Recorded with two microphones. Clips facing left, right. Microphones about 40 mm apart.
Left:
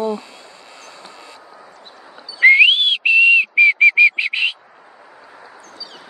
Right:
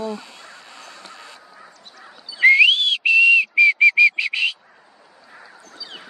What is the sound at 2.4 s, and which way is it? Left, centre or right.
Whistling, left.